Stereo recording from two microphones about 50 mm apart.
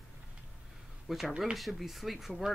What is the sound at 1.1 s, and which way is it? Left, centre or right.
Speech, centre.